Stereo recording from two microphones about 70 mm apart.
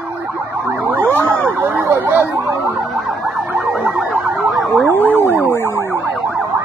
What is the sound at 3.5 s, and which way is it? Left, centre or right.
Emergency vehicle, centre.